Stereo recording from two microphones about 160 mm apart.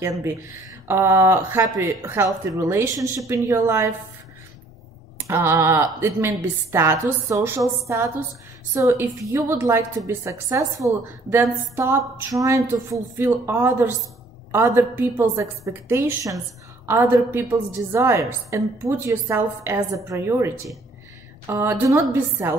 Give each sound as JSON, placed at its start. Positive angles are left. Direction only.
{"t": 0.8, "sound": "speech", "side_deg": -15}
{"t": 5.1, "sound": "speech", "side_deg": -15}